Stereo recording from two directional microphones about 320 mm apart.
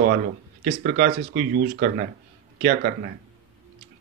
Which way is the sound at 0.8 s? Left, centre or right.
Right.